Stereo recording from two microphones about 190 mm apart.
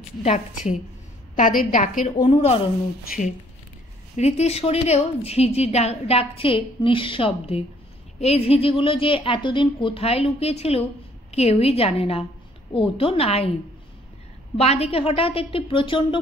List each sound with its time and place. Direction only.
0.2 s a woman's voice: 35° left (ahead or behind)
1.6 s a woman's voice: 45° left (ahead or behind)
4.2 s a woman's voice: 35° left (ahead or behind)
14.6 s a woman's voice: 30° left (ahead or behind)